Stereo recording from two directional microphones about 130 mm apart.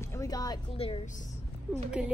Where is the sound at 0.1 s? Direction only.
25° left (ahead or behind).